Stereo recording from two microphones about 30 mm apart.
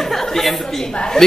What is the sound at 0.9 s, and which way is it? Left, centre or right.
Speech, left.